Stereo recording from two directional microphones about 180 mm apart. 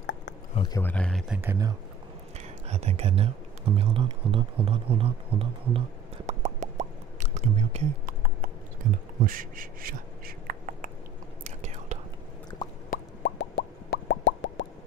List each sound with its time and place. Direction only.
0.7 s speech: 10° left (ahead or behind)
1.3 s speech: 15° right (ahead or behind)
2.7 s speech: 35° right (ahead or behind)
6.2 s plop: 40° right (ahead or behind)
8.8 s speech: 45° right (ahead or behind)
11.4 s whispering: 40° right (ahead or behind)
12.6 s plop: 25° left (ahead or behind)
12.9 s plop: 65° left (ahead or behind); by 14.7 s 85° left